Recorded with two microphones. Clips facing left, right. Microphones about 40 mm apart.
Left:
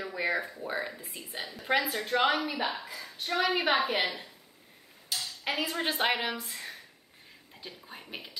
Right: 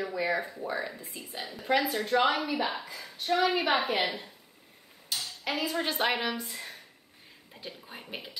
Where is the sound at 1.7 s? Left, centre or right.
Left.